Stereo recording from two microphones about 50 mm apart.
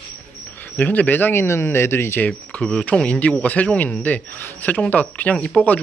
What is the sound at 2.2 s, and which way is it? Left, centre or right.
Speech, left.